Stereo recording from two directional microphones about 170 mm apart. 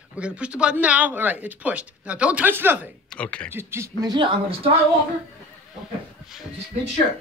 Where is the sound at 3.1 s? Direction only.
5° left (ahead or behind).